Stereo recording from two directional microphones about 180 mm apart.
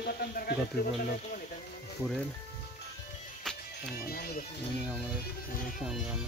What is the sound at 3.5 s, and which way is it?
Music, 5° left (ahead or behind).